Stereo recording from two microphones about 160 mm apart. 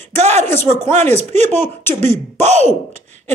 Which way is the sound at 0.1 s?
45° right (ahead or behind).